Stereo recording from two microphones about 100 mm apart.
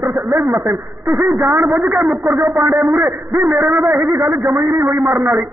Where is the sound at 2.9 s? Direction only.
30° right (ahead or behind).